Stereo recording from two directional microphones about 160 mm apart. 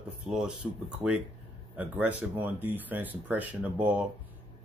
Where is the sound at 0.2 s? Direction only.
5° right (ahead or behind).